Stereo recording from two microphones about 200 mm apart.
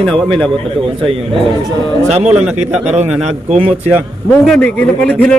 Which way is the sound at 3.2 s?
30° right (ahead or behind).